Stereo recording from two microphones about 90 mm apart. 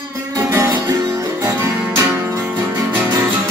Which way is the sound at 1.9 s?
30° right (ahead or behind).